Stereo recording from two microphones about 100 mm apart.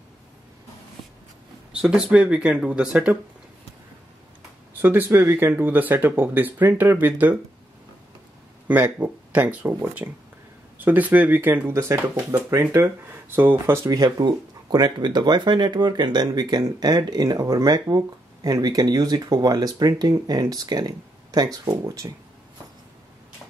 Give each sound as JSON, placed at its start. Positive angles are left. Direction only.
{"t": 1.7, "sound": "speech", "side_deg": -10}
{"t": 4.8, "sound": "speech", "side_deg": -20}
{"t": 8.6, "sound": "speech", "side_deg": -15}
{"t": 13.8, "sound": "speech", "side_deg": -40}